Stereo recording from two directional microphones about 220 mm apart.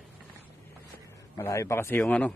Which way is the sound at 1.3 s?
15° left (ahead or behind).